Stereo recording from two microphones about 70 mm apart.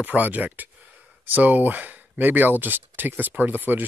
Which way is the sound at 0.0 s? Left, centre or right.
Right.